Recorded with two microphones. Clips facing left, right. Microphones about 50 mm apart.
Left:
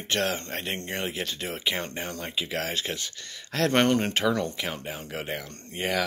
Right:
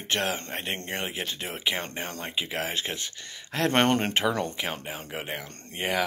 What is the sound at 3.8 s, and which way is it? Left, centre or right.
Speech, right.